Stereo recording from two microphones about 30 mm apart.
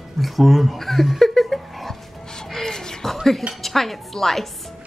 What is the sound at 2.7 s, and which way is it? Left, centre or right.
Speech, centre.